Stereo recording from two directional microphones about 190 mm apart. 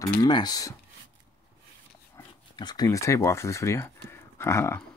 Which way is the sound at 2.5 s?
25° left (ahead or behind).